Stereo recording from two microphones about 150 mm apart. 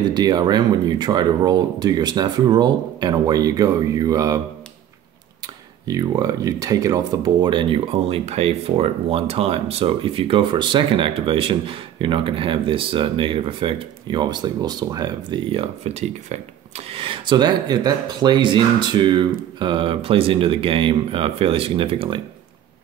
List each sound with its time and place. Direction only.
0.1 s speech: 30° right (ahead or behind)
5.9 s speech: 25° right (ahead or behind)